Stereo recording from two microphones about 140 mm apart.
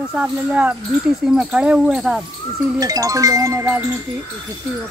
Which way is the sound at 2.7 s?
25° right (ahead or behind).